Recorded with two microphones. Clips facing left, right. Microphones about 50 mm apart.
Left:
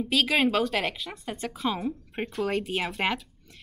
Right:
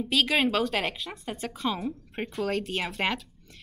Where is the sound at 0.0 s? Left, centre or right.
Centre.